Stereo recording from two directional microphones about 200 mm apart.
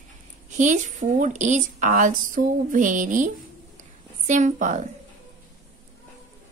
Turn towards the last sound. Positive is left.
turn(degrees=-35)  # may be behind; listen again after turning